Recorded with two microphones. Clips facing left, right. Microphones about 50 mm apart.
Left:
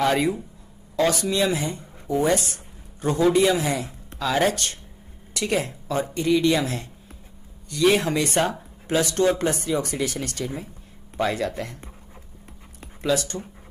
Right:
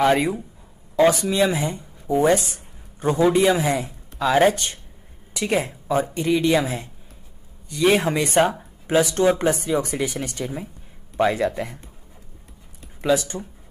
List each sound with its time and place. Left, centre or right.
0.0 s a man's voice: centre
13.0 s speech: centre